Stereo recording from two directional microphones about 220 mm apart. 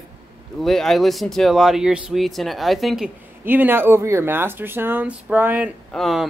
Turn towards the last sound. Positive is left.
turn(degrees=0)  # may be behind; listen again after turning